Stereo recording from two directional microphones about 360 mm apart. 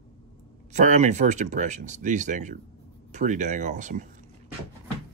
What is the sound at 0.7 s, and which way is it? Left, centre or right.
Speech, centre.